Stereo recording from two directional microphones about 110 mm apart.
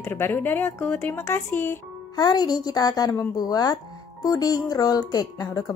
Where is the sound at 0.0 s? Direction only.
20° left (ahead or behind).